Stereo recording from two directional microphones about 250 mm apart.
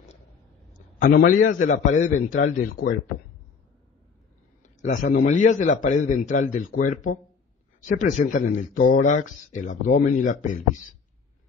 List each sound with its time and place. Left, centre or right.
0.7 s a man's voice: left
4.6 s a man's voice: left